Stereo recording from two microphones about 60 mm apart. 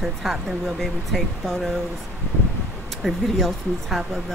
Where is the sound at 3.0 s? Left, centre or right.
Centre.